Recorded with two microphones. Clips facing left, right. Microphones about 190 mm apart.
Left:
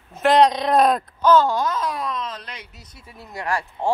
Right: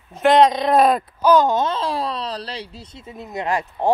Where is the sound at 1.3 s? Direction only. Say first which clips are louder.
Right 1 dB; 20° right (ahead or behind).